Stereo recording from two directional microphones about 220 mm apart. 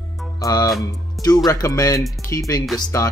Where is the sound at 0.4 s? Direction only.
15° left (ahead or behind).